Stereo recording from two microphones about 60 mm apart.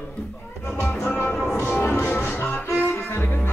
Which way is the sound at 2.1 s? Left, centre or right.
Left.